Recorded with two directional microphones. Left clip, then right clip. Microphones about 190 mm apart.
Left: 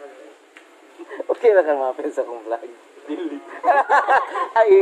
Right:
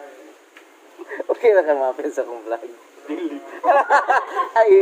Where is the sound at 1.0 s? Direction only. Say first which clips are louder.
Even; 10° right (ahead or behind).